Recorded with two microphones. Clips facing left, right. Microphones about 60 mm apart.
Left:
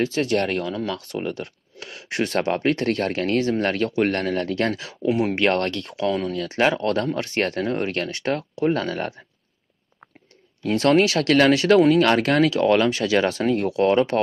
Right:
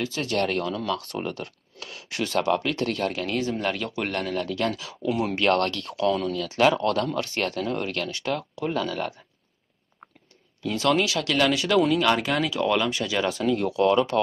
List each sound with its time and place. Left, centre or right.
0.0 s speech: left
5.0 s speech: left
10.6 s speech: left